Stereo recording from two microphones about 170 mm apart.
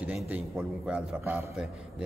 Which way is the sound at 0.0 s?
10° right (ahead or behind).